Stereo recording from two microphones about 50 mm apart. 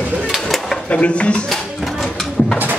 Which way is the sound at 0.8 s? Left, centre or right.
Left.